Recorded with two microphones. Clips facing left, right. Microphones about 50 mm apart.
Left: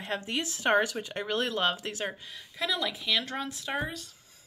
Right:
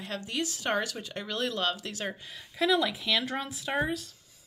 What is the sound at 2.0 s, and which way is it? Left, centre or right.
Speech, centre.